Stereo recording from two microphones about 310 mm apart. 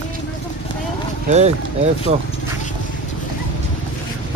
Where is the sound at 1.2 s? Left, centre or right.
Right.